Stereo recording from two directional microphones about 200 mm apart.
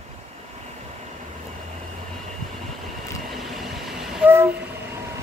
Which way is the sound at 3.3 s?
Centre (ahead or behind).